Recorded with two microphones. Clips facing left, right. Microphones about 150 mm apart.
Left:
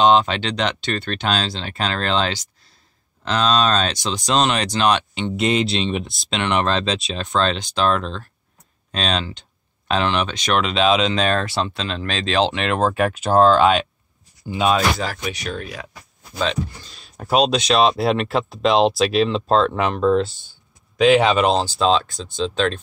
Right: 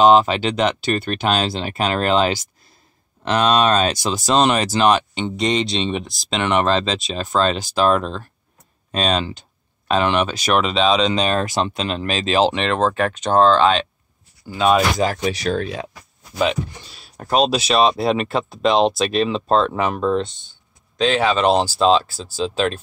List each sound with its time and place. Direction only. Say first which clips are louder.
0.0 s speech: right 3 dB; 5° right (ahead or behind)
11.3 s speech: right 2 dB; 15° right (ahead or behind)
12.6 s speech: even; 5° left (ahead or behind)
15.2 s speech: right 7 dB; 35° right (ahead or behind)
16.3 s speech: right 3 dB; 10° right (ahead or behind)
21.5 s speech: right 2 dB; 5° right (ahead or behind)